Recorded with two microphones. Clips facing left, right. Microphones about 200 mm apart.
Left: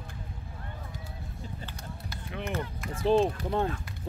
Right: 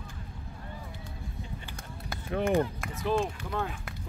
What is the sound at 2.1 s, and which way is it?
Run, 50° right (ahead or behind).